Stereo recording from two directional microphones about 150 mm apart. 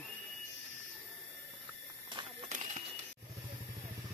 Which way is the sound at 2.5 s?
55° right (ahead or behind).